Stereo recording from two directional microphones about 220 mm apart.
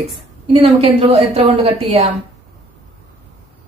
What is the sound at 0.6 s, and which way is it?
Speech, 25° right (ahead or behind).